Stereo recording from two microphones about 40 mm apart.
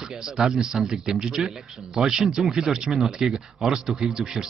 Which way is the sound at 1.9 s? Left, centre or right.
Centre.